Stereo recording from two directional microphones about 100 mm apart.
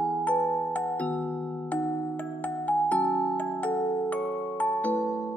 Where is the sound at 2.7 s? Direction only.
15° left (ahead or behind).